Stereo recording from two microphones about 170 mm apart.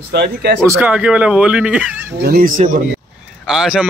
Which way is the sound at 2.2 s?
60° right (ahead or behind).